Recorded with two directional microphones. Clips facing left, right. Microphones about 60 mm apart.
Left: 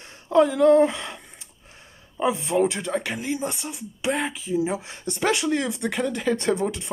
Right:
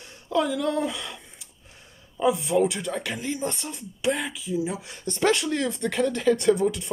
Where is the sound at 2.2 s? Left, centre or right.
Left; by 3.8 s centre.